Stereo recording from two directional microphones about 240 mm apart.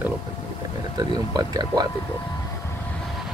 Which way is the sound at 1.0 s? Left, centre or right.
Centre.